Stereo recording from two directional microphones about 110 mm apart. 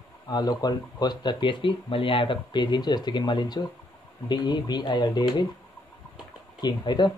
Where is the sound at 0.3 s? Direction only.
35° left (ahead or behind).